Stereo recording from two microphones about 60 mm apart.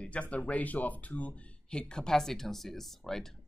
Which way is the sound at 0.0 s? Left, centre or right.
Left.